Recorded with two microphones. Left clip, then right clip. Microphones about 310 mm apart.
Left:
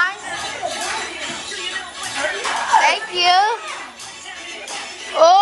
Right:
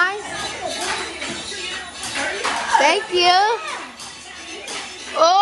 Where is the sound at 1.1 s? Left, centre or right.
Left.